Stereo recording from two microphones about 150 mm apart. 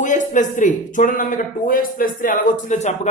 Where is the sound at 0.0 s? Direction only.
55° left (ahead or behind).